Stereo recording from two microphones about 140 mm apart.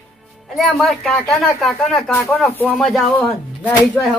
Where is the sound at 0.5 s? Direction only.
Centre (ahead or behind).